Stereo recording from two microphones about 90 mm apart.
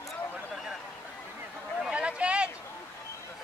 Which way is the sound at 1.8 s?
10° right (ahead or behind).